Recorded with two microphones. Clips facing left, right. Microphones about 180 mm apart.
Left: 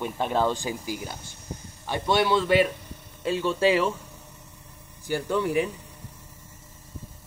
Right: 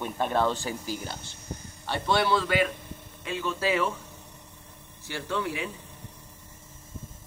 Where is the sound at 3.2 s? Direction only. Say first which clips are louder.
Left 7 dB; 35° left (ahead or behind).